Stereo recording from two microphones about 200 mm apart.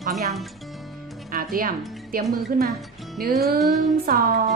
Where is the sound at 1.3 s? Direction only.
45° right (ahead or behind).